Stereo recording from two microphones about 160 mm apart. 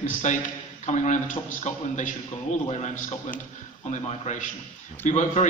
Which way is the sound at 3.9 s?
50° left (ahead or behind).